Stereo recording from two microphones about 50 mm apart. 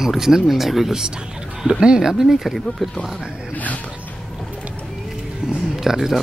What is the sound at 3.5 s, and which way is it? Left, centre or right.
Speech, left.